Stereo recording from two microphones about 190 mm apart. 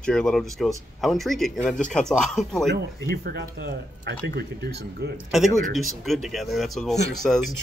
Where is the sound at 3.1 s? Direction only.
55° right (ahead or behind).